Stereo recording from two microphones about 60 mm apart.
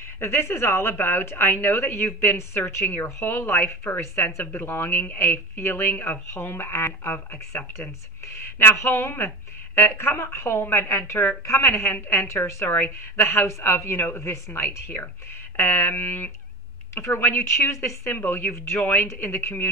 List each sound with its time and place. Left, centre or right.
0.2 s a woman's voice: left
8.7 s a woman's voice: left
11.5 s a woman's voice: left
12.6 s a woman's voice: left
16.9 s a woman's voice: left
18.1 s a woman's voice: left